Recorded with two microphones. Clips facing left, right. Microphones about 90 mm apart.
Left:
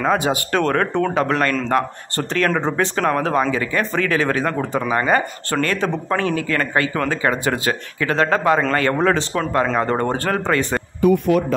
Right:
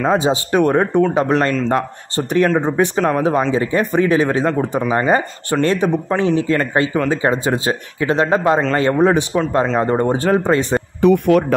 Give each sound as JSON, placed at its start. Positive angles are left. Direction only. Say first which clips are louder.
{"t": 0.1, "sound": "speech", "louder": "right 3 dB", "side_deg": -20}
{"t": 11.0, "sound": "speech", "louder": "right 3 dB", "side_deg": -65}